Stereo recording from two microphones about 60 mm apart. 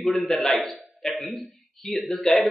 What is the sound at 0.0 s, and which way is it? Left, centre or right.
A man's voice, centre.